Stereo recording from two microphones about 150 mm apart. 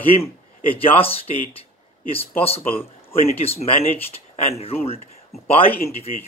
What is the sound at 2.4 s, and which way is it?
Speech, 40° left (ahead or behind).